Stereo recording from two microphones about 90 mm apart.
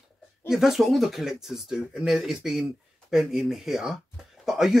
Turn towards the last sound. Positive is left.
turn(degrees=-5)  # may be behind; listen again after turning